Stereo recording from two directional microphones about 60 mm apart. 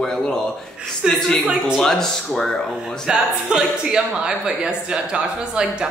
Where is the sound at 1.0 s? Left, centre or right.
Centre.